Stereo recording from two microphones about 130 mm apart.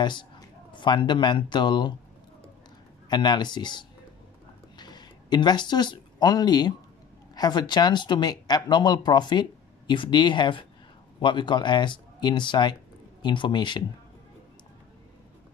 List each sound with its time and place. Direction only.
0.0 s speech: 35° left (ahead or behind)
3.1 s speech: 35° left (ahead or behind)